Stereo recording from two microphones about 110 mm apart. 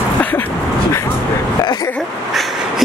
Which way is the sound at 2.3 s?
Centre (ahead or behind).